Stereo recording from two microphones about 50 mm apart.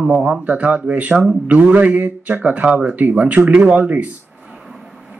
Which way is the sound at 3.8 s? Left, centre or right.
Right.